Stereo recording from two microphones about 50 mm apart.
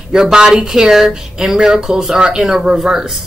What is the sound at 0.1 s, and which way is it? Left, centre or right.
Speech, centre.